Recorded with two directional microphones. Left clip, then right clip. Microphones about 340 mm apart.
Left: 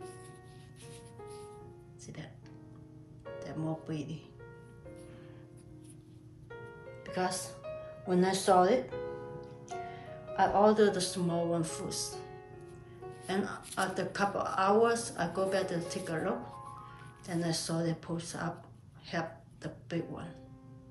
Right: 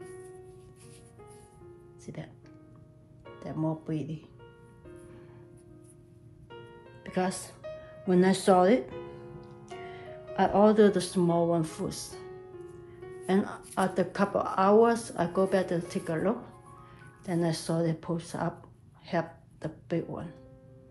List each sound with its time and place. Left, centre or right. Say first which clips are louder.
2.0 s speech: right 5 dB; centre
3.3 s music: right 5 dB; centre
7.0 s speech: right 2 dB; centre
13.3 s speech: right 6 dB; centre